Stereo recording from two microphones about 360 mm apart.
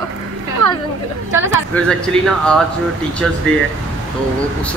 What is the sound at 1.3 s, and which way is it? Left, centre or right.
A man's voice, centre.